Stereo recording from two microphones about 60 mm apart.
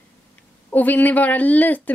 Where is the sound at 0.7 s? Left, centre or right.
Left.